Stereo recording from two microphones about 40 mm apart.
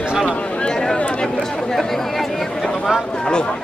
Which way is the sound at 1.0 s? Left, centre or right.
Left.